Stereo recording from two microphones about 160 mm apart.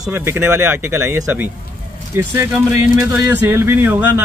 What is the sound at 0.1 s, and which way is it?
Speech, 15° right (ahead or behind).